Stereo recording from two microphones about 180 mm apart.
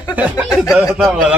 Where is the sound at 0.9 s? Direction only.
5° right (ahead or behind).